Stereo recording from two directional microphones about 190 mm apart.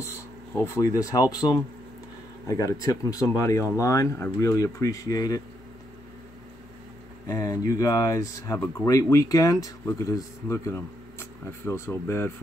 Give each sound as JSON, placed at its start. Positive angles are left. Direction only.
{"t": 0.6, "sound": "speech", "side_deg": 15}
{"t": 7.2, "sound": "speech", "side_deg": 15}